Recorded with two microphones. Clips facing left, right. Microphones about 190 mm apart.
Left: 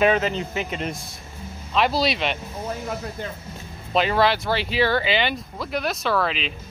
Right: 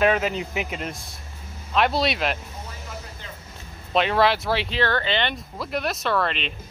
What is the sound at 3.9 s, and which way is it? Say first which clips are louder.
Speech: even; centre (ahead or behind).